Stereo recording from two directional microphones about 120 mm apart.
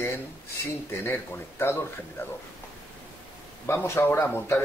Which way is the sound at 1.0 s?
20° left (ahead or behind).